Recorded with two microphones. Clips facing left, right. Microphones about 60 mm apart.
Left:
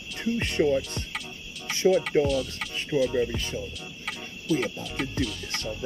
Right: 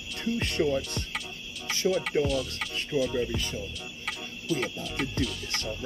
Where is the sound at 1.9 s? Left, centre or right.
Centre.